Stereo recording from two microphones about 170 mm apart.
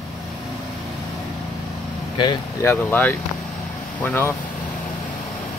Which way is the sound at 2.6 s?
10° left (ahead or behind).